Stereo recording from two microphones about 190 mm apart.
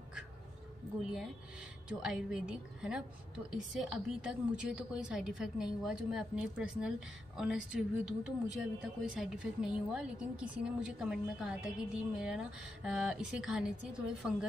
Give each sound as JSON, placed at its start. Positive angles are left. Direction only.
{"t": 1.9, "sound": "speech", "side_deg": -5}